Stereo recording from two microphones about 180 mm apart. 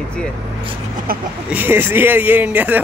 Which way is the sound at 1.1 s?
55° right (ahead or behind).